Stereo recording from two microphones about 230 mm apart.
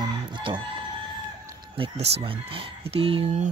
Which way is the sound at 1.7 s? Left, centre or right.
Right.